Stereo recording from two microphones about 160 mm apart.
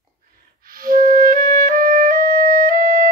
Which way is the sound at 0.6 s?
65° right (ahead or behind).